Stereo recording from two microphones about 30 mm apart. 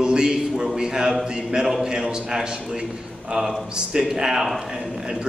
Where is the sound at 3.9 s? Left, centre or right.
Centre.